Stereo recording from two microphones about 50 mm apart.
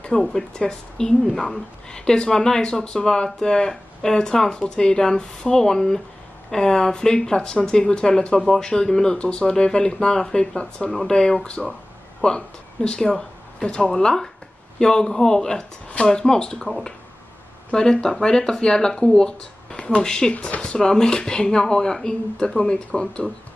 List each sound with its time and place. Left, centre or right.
0.2 s speech: centre